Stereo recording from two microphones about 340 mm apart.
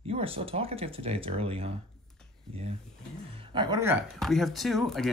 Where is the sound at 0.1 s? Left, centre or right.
Centre.